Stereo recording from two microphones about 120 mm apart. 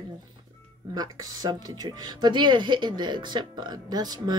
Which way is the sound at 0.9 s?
30° right (ahead or behind).